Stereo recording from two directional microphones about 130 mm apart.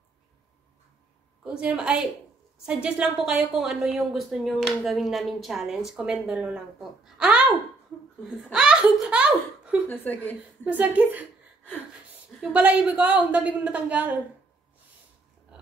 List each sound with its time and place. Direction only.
1.4 s a woman's voice: 10° right (ahead or behind)
9.8 s a woman's voice: 15° left (ahead or behind)
10.6 s a woman's voice: 10° right (ahead or behind)
12.4 s a woman's voice: 10° right (ahead or behind)